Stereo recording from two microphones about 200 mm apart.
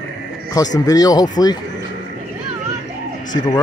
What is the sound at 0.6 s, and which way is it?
Speech, 15° left (ahead or behind).